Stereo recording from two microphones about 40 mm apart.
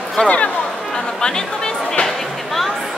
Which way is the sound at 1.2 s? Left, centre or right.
Centre.